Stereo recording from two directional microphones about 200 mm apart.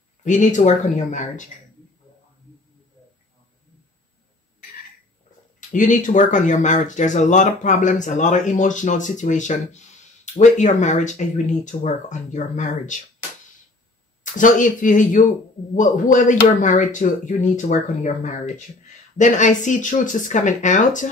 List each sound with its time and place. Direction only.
0.2 s speech: 40° left (ahead or behind)
5.7 s speech: 40° left (ahead or behind)
14.2 s speech: 40° left (ahead or behind)